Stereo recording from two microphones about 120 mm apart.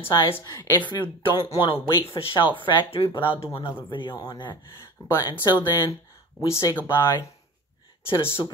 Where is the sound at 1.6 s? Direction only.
50° left (ahead or behind).